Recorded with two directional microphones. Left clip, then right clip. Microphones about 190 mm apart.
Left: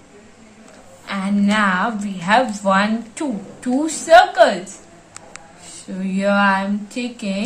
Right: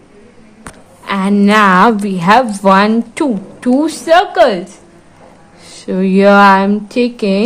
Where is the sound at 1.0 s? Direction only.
55° right (ahead or behind).